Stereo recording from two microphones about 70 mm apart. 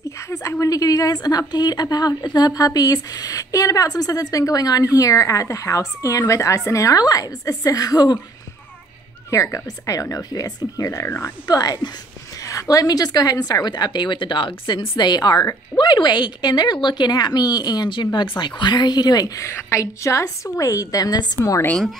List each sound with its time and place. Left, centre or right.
0.2 s speech: left
9.3 s speech: left
12.4 s a woman's voice: left
15.8 s a woman's voice: left
18.4 s a woman's voice: left
19.4 s speech: left
20.5 s speech: left